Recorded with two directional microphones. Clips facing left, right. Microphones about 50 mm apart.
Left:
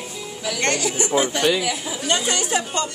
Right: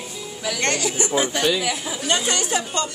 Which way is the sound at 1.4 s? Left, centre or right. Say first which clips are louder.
Left 1 dB; left.